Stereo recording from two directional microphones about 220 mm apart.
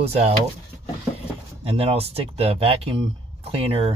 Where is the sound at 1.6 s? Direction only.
25° right (ahead or behind).